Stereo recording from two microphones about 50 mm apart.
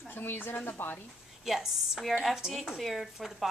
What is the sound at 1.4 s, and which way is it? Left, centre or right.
Speech, centre.